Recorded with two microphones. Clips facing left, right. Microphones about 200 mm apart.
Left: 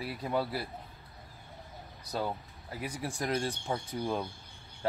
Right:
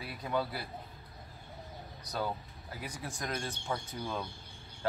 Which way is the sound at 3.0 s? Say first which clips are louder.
Left 6 dB; 30° left (ahead or behind).